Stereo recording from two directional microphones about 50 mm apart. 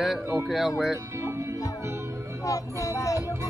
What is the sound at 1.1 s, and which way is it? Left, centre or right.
Music, right.